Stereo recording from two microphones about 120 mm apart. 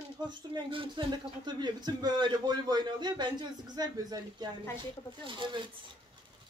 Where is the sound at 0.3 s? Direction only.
45° right (ahead or behind).